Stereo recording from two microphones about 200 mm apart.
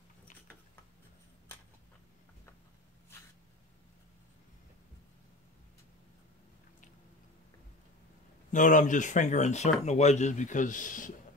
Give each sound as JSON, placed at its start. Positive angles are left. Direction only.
{"t": 8.5, "sound": "speech", "side_deg": 40}